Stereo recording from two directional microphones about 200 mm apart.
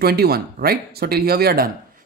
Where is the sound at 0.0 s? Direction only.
50° right (ahead or behind).